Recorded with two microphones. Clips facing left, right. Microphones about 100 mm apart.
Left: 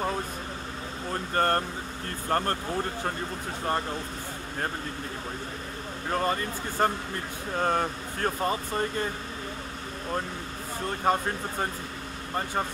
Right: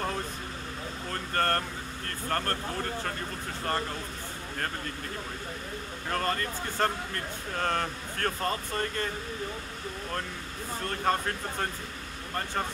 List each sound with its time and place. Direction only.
1.1 s speech: 15° left (ahead or behind)
6.0 s speech: 15° left (ahead or behind)
10.9 s speech: 15° left (ahead or behind)